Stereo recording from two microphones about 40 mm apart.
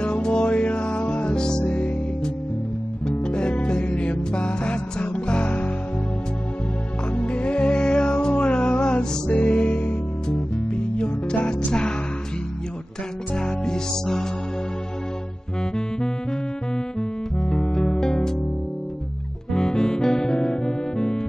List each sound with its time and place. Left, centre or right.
0.0 s music: left
1.6 s music: left
3.1 s music: left
7.2 s music: left
10.7 s music: left
13.4 s music: centre
17.4 s music: centre
19.5 s music: centre